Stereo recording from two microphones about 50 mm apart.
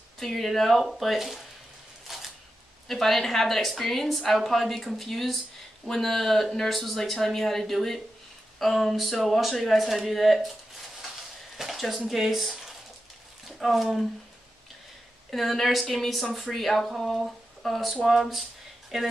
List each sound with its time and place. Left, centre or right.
0.2 s a woman's voice: centre
2.0 s a sound: centre
2.9 s a woman's voice: centre
11.5 s a sound: centre
12.1 s a woman's voice: centre
15.3 s a woman's voice: centre